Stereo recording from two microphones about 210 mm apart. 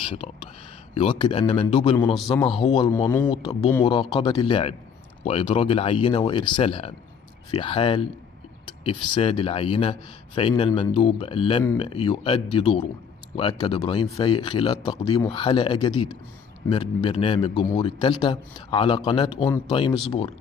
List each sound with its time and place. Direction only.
0.0 s a man's voice: 25° left (ahead or behind)
2.9 s a man's voice: 10° left (ahead or behind)